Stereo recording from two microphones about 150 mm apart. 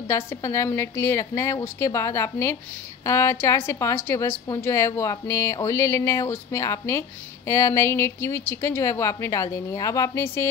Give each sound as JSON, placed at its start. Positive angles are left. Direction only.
{"t": 0.1, "sound": "a woman's voice", "side_deg": 20}